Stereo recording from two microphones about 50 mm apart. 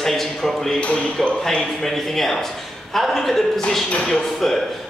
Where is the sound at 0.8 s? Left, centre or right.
Left.